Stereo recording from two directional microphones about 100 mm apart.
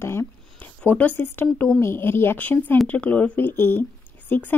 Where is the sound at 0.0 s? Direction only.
25° left (ahead or behind).